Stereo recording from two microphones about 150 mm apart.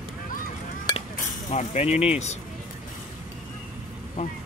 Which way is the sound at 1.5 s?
50° left (ahead or behind).